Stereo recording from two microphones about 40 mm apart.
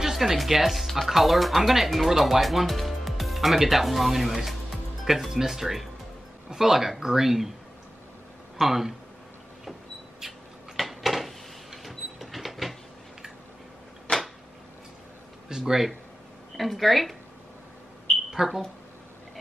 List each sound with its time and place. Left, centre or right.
0.0 s speech: centre
8.5 s speech: centre
10.8 s a sound: centre
14.1 s a sound: left
15.4 s speech: centre
16.5 s speech: centre
18.3 s speech: centre